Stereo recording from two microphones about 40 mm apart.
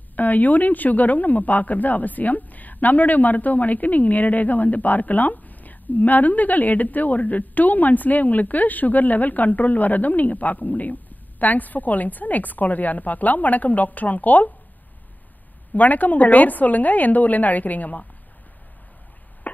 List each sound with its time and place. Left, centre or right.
0.1 s speech: left
15.7 s speech: left
19.4 s chop: left